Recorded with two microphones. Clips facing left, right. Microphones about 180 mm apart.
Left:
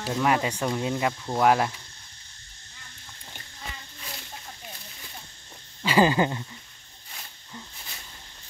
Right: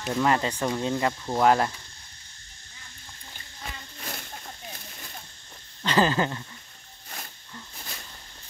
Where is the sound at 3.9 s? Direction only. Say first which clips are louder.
Right 4 dB; 55° right (ahead or behind).